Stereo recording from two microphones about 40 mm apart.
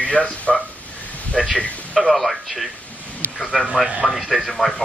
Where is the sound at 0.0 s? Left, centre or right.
Left.